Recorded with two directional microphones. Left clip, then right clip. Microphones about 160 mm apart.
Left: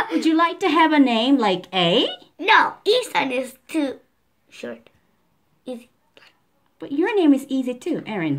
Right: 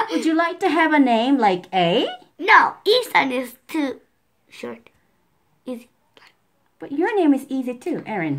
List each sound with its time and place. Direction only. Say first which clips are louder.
0.2 s a woman's voice: left 3 dB; 10° left (ahead or behind)
2.4 s a woman's voice: right 2 dB; 40° right (ahead or behind)
5.6 s a sound: right 1 dB; 45° right (ahead or behind)
6.8 s a woman's voice: even; 10° left (ahead or behind)